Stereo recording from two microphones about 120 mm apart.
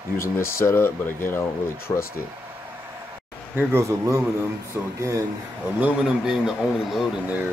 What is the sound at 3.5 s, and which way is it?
Speech, 20° right (ahead or behind).